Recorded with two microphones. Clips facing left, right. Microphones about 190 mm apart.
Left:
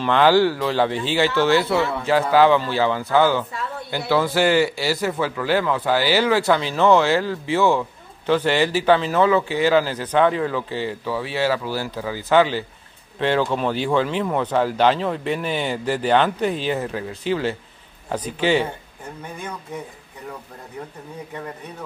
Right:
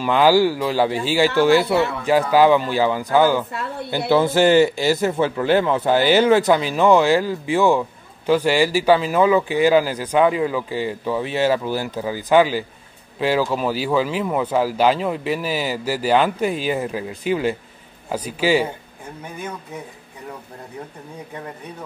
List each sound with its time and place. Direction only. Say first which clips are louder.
0.0 s a man's voice: right 1 dB; 10° right (ahead or behind)